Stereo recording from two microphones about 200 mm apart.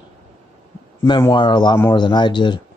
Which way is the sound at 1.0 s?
25° left (ahead or behind).